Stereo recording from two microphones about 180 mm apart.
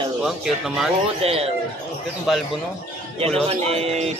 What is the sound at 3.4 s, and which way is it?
Speech, 35° right (ahead or behind).